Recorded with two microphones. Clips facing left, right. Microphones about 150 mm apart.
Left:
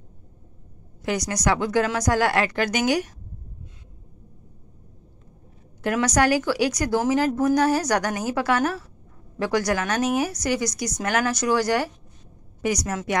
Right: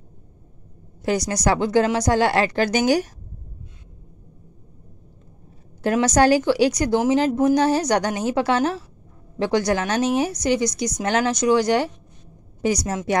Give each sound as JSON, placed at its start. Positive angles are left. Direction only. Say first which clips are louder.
{"t": 1.0, "sound": "speech", "louder": "right 3 dB", "side_deg": -30}
{"t": 5.8, "sound": "speech", "louder": "right 4 dB", "side_deg": -30}